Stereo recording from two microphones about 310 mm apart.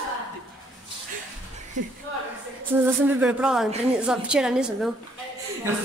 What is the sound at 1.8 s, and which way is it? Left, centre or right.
Speech, right.